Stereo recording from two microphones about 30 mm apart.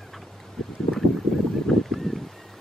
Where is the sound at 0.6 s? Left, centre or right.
Left.